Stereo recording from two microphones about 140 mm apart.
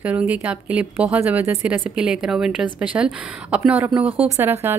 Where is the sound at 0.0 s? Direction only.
10° right (ahead or behind).